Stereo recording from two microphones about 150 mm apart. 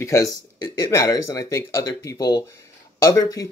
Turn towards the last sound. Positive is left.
turn(degrees=25)  # may be behind; listen again after turning